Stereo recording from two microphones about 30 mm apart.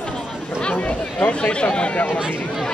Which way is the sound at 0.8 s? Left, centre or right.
Left.